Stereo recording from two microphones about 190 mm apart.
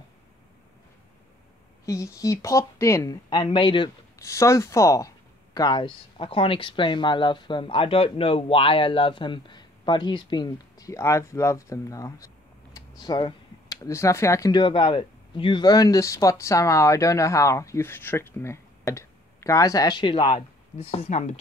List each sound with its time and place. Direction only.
1.9 s speech: 15° left (ahead or behind); by 21.4 s 35° left (ahead or behind)